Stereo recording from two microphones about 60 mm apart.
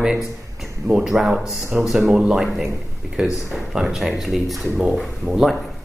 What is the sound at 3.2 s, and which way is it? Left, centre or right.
A man's voice, centre.